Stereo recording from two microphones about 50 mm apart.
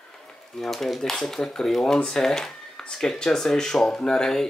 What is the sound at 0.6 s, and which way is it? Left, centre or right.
Speech, centre.